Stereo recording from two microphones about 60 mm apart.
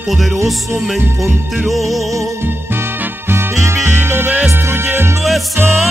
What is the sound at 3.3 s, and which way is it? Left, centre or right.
Music, right.